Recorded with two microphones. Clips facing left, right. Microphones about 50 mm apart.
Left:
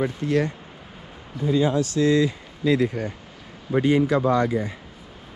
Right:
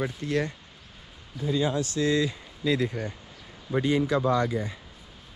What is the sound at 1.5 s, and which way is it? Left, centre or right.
Speech, left.